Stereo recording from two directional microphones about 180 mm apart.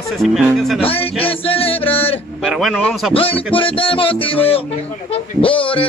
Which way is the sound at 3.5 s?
30° left (ahead or behind).